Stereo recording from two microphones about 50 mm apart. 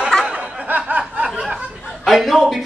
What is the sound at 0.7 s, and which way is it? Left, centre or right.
Snicker, right.